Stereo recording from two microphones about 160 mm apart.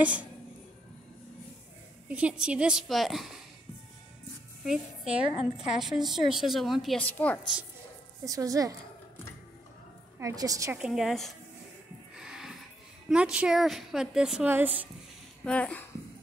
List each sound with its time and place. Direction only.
0.0 s speech: 10° right (ahead or behind)
2.0 s a woman's voice: 5° right (ahead or behind)
4.6 s a woman's voice: 5° right (ahead or behind)
7.1 s speech: 10° left (ahead or behind)
8.3 s a woman's voice: 20° right (ahead or behind)
10.1 s a woman's voice: 20° right (ahead or behind)
10.8 s a woman's voice: centre (ahead or behind)
12.2 s music: 5° right (ahead or behind)
13.1 s a woman's voice: 5° right (ahead or behind)
15.4 s speech: 10° left (ahead or behind)